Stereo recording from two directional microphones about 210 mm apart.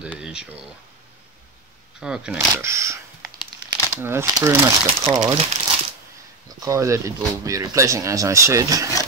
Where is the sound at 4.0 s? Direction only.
10° right (ahead or behind).